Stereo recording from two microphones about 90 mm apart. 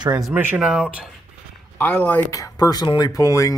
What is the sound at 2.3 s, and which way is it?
Speech, 40° left (ahead or behind).